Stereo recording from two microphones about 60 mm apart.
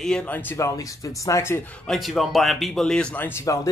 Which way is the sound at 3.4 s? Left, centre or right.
Left.